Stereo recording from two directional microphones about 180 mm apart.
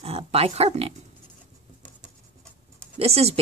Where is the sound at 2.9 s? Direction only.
35° right (ahead or behind).